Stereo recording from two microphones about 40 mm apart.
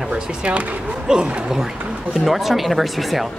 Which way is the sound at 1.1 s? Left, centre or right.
Centre.